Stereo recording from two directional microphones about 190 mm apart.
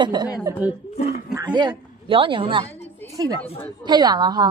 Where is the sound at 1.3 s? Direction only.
20° right (ahead or behind).